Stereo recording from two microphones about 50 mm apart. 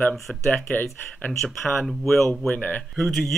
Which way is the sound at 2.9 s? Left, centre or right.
Centre.